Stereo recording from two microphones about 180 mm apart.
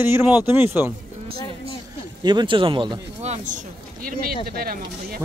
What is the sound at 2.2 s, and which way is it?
Speech, 25° right (ahead or behind).